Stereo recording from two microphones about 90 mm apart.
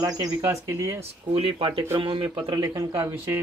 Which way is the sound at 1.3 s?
90° right.